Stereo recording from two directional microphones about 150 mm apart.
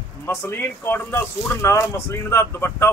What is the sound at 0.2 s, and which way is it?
Speech, 15° left (ahead or behind).